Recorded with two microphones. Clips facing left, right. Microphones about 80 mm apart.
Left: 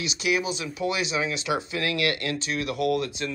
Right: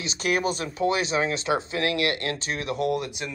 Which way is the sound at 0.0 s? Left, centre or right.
Right.